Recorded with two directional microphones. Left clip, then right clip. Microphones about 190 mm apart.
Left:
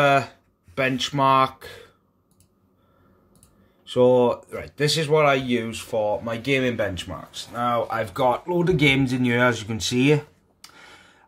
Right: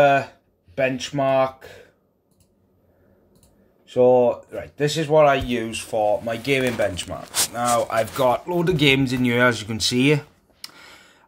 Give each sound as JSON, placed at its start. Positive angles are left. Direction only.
{"t": 0.7, "sound": "speech", "side_deg": 45}
{"t": 3.9, "sound": "speech", "side_deg": 45}
{"t": 5.7, "sound": "speech", "side_deg": 30}